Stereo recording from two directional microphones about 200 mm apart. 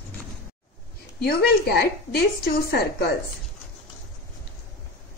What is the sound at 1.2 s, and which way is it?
A woman's voice, 50° left (ahead or behind).